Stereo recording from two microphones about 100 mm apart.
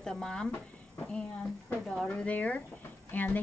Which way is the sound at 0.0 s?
5° left (ahead or behind).